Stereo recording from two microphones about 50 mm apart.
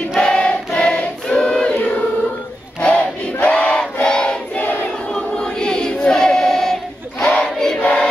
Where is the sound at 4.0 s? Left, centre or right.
Centre.